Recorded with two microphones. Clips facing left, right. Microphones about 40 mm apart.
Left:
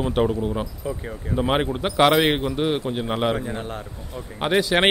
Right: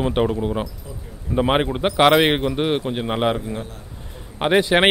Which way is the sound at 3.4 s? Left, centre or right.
Left.